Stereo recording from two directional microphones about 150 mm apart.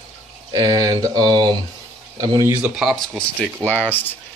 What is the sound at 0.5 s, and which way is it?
Speech, 25° right (ahead or behind).